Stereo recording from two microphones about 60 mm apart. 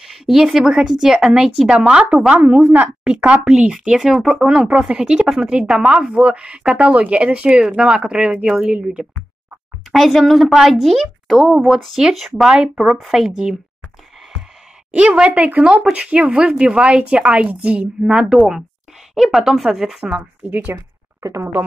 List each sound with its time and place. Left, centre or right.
0.0 s speech: centre
1.9 s a woman's voice: centre
3.3 s speech: centre
4.4 s speech: centre
9.9 s speech: centre
12.5 s speech: centre
12.9 s speech: centre
14.9 s a woman's voice: right
15.6 s a woman's voice: centre
19.1 s speech: centre
20.4 s a woman's voice: right
21.2 s speech: right